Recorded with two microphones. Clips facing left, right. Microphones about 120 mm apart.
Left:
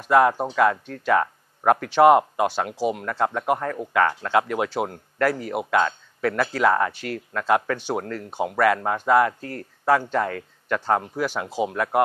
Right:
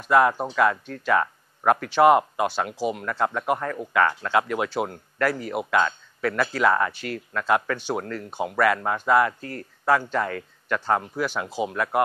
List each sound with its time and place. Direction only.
0.1 s speech: 40° left (ahead or behind)
11.6 s speech: 40° left (ahead or behind)